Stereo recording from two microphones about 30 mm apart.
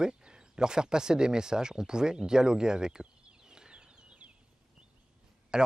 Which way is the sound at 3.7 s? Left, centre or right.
Right.